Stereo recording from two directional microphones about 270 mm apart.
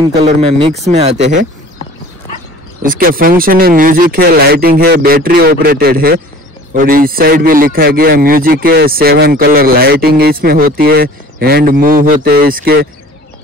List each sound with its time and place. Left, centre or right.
0.0 s speech: centre
2.8 s a man's voice: right